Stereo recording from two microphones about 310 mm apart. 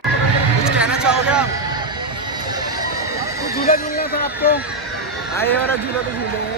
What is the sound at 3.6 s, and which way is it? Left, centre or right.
Speech, left.